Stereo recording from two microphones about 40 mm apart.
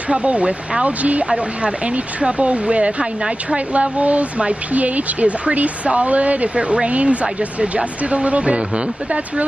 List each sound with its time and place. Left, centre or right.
0.1 s speech: right